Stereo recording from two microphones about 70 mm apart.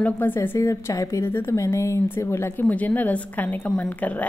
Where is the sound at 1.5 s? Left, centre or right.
Left.